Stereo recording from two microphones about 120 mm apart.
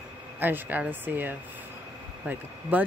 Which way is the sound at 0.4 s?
15° right (ahead or behind).